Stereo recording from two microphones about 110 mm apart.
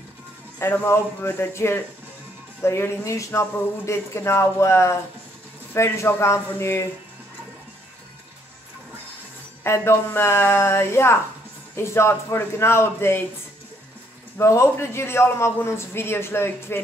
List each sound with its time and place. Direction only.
0.6 s speech: 20° left (ahead or behind)
9.6 s speech: 20° left (ahead or behind)
14.4 s speech: 25° left (ahead or behind)